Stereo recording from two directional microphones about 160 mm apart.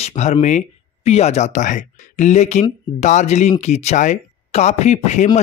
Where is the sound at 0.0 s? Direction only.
45° left (ahead or behind).